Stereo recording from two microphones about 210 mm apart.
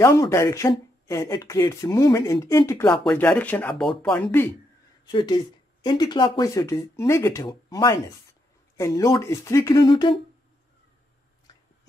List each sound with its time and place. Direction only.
0.0 s a woman's voice: 15° left (ahead or behind)